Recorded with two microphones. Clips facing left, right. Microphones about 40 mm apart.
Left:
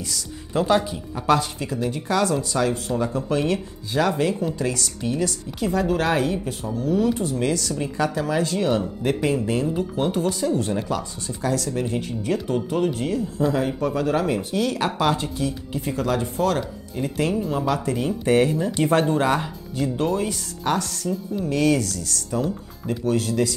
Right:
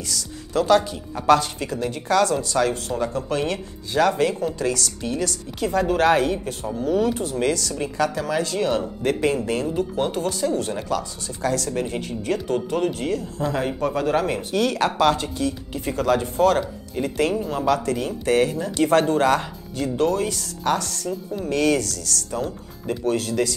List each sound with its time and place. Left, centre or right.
0.0 s a woman's voice: centre
0.9 s a woman's voice: centre
11.7 s a woman's voice: centre
17.7 s a woman's voice: centre
21.1 s speech: centre
22.3 s speech: centre